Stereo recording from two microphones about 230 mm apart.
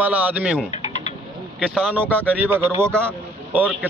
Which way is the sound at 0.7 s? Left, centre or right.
Left.